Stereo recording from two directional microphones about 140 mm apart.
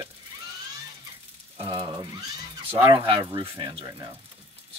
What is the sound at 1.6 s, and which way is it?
Speech, 35° right (ahead or behind).